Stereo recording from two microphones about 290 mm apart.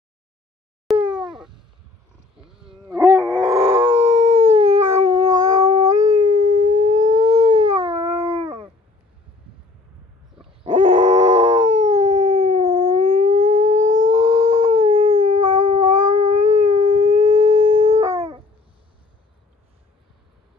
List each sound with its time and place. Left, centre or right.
0.9 s a sound: centre
2.4 s wild animals: centre
2.9 s howl: centre
6.8 s siren: right
7.1 s howl: centre
10.6 s dog: centre